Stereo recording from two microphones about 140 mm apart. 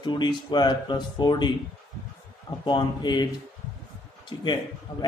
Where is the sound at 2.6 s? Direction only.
30° left (ahead or behind).